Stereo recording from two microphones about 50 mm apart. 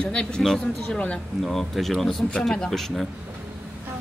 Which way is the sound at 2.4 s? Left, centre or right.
Centre.